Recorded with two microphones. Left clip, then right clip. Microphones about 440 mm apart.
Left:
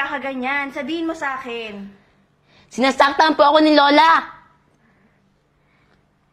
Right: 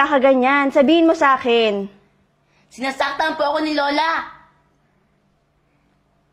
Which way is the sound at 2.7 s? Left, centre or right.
Left.